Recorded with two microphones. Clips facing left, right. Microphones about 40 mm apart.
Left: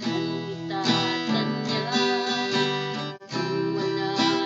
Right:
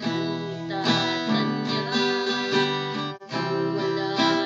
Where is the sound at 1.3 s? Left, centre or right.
Centre.